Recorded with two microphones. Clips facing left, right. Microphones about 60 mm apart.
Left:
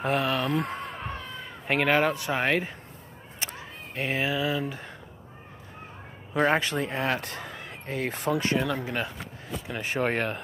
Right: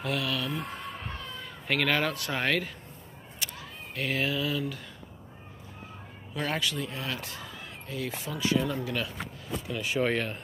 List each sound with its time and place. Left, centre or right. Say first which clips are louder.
0.0 s speech: left 5 dB; left
0.5 s speech: left 6 dB; left
1.7 s speech: left 4 dB; left
3.3 s a sound: left 2 dB; left
6.3 s speech: left 7 dB; left
8.8 s speech: left 2 dB; left
9.7 s speech: left 1 dB; left